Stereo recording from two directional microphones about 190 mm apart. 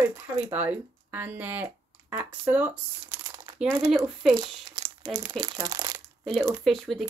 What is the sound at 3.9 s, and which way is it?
Speech, centre (ahead or behind).